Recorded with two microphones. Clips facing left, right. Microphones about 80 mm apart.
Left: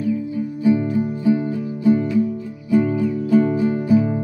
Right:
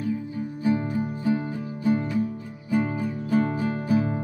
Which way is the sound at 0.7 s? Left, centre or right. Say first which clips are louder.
Left 7 dB; right.